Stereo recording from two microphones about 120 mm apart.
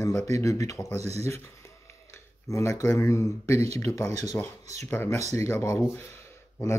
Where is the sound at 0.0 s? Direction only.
25° left (ahead or behind).